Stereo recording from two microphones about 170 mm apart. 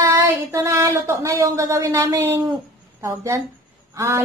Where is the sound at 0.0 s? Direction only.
15° right (ahead or behind).